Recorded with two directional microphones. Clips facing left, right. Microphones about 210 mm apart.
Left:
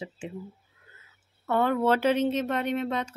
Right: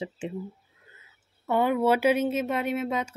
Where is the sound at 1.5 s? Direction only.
10° right (ahead or behind).